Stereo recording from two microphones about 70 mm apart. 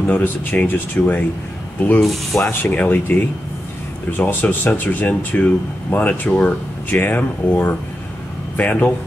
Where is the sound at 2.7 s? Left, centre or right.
Left.